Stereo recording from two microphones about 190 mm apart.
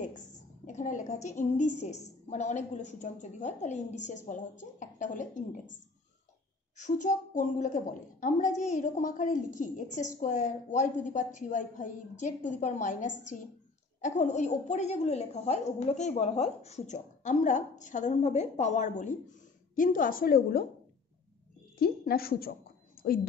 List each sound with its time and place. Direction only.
0.0 s a woman's voice: 40° left (ahead or behind)
6.8 s a woman's voice: 40° left (ahead or behind)
21.7 s a woman's voice: 50° left (ahead or behind)